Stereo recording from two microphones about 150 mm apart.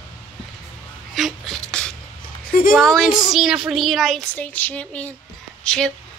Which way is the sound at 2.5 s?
75° left (ahead or behind).